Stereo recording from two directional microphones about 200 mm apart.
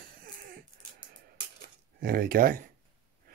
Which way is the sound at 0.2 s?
45° right (ahead or behind).